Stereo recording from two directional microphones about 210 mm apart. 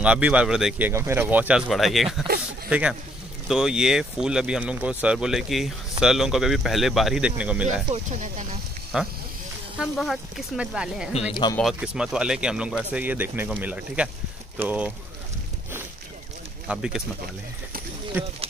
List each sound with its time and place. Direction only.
0.0 s speech: 5° right (ahead or behind)
7.9 s speech: 35° right (ahead or behind)
8.9 s speech: centre (ahead or behind)
16.6 s speech: 5° right (ahead or behind)
18.1 s speech: 10° right (ahead or behind)